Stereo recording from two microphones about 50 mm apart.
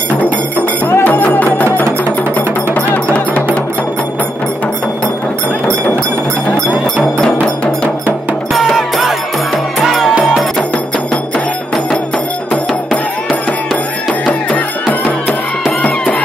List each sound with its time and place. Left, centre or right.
0.2 s cowbell: left
1.0 s music: left
7.0 s cowbell: centre
8.7 s music: centre
14.9 s music: left